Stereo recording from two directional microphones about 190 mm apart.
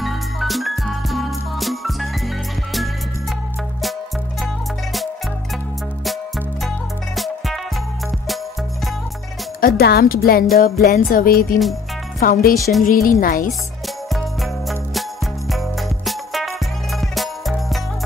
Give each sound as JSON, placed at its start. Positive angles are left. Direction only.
{"t": 0.0, "sound": "music", "side_deg": 0}
{"t": 7.2, "sound": "music", "side_deg": 0}
{"t": 9.6, "sound": "music", "side_deg": 55}
{"t": 14.0, "sound": "jingle bell", "side_deg": 0}
{"t": 15.5, "sound": "music", "side_deg": 0}